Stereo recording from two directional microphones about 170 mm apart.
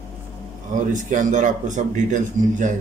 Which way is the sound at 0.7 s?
50° right (ahead or behind).